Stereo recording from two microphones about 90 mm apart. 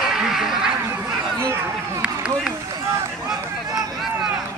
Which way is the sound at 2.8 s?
35° right (ahead or behind).